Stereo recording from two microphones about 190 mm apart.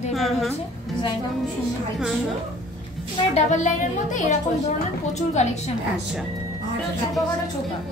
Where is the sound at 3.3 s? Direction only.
40° left (ahead or behind).